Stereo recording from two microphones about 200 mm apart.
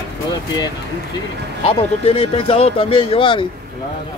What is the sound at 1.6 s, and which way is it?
Speech, 30° left (ahead or behind).